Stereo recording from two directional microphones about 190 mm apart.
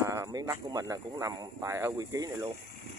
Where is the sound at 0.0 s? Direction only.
15° right (ahead or behind).